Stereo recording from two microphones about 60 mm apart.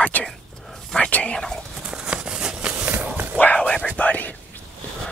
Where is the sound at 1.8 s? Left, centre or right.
Centre.